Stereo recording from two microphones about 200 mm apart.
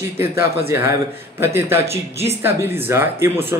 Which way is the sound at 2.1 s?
30° right (ahead or behind).